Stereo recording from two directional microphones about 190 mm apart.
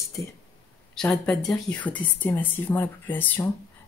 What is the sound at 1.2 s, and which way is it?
Speech, 5° left (ahead or behind).